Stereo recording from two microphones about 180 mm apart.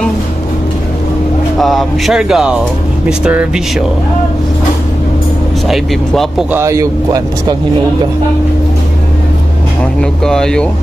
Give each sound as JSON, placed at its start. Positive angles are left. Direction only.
{"t": 1.6, "sound": "speech", "side_deg": 0}
{"t": 5.7, "sound": "speech", "side_deg": 0}
{"t": 6.6, "sound": "speech", "side_deg": -15}
{"t": 9.9, "sound": "speech", "side_deg": 5}